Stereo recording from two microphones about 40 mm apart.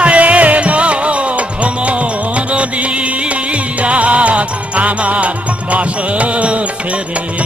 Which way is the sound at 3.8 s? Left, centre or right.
Right.